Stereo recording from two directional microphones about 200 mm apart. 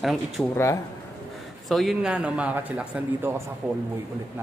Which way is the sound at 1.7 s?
Centre (ahead or behind).